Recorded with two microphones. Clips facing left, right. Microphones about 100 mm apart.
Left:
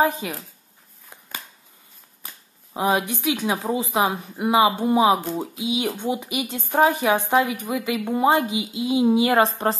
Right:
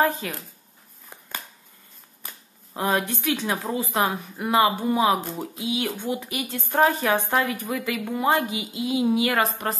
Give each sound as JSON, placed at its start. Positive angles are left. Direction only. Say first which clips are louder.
{"t": 0.0, "sound": "speech", "louder": "left 2 dB", "side_deg": 15}
{"t": 2.7, "sound": "a woman's voice", "louder": "left 2 dB", "side_deg": 15}